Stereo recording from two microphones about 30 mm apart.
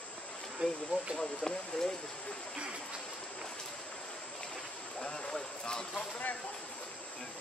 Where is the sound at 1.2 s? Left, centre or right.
Left.